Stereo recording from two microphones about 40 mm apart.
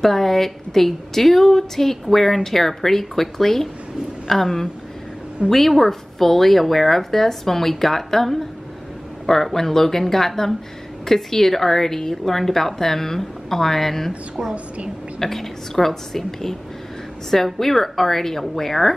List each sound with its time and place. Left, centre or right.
0.0 s a woman's voice: centre
15.1 s a woman's voice: centre